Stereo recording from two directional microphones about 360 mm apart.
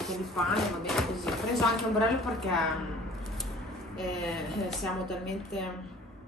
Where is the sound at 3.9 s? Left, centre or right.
Centre.